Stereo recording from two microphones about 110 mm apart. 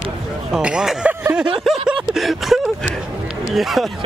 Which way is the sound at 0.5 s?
10° right (ahead or behind).